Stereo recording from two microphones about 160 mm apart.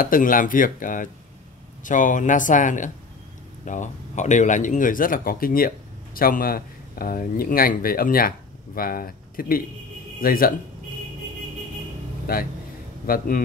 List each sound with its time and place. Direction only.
0.0 s speech: 60° left (ahead or behind)
13.0 s speech: 65° left (ahead or behind)